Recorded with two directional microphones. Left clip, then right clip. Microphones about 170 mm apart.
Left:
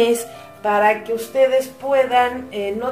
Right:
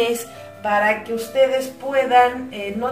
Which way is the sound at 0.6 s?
45° left (ahead or behind).